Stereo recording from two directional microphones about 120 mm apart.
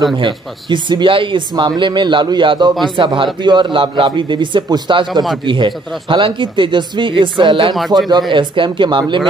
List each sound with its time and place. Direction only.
0.2 s a man's voice: 40° right (ahead or behind)